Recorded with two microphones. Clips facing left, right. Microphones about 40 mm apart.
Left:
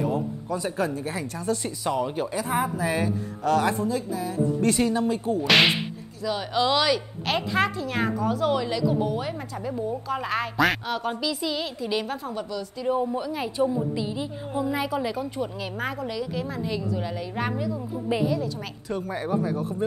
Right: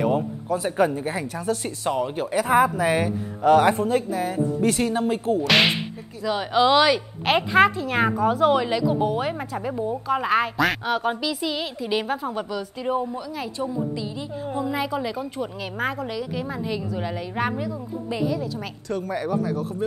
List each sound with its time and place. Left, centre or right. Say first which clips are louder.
0.7 s speech: right 8 dB; right
1.0 s a woman's voice: right 2 dB; centre
2.3 s speech: right 10 dB; right
3.0 s speech: right 3 dB; right
3.7 s speech: right 4 dB; right
4.6 s a woman's voice: even; centre
4.8 s speech: right 2 dB; right
5.5 s a woman's voice: left 1 dB; centre
6.2 s a woman's voice: right 4 dB; centre
7.2 s a woman's voice: right 7 dB; right
13.1 s a woman's voice: left 2 dB; centre
18.0 s speech: left 1 dB; centre